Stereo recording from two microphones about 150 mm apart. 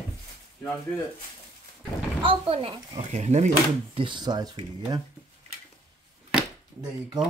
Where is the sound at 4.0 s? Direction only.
30° right (ahead or behind).